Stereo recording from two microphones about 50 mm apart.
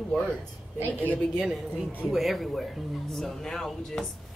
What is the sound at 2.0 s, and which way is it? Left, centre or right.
A woman's voice, centre.